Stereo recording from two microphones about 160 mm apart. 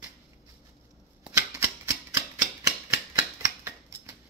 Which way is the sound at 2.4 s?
20° right (ahead or behind).